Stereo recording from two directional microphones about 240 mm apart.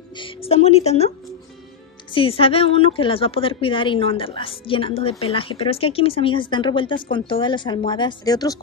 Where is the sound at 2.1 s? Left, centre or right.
Left.